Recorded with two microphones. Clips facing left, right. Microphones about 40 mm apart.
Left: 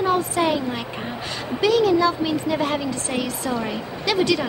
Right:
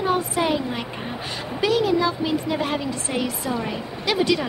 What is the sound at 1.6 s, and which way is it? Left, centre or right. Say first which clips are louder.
Speech: left 3 dB; centre.